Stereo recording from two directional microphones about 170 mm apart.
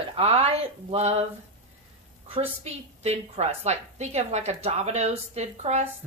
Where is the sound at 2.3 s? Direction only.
40° right (ahead or behind).